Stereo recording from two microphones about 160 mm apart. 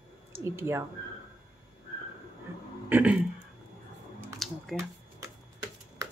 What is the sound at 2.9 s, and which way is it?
Speech, 10° right (ahead or behind).